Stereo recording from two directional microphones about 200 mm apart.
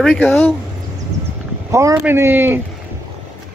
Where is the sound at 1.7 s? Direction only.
15° right (ahead or behind).